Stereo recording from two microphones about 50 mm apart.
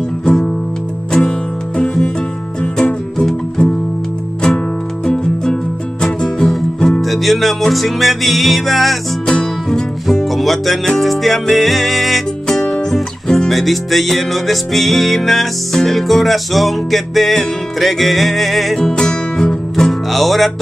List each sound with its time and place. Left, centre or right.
0.2 s music: centre
2.6 s music: centre
5.0 s music: centre
9.2 s music: centre
10.3 s music: centre
12.4 s music: centre
13.5 s music: centre
18.8 s music: centre